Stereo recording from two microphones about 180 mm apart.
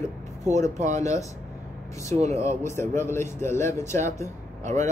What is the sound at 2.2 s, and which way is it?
Speech, 40° right (ahead or behind).